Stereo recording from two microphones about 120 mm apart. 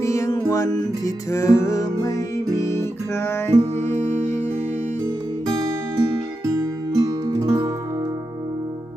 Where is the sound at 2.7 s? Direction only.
20° left (ahead or behind).